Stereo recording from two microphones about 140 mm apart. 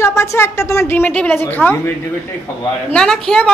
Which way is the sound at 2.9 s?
5° left (ahead or behind).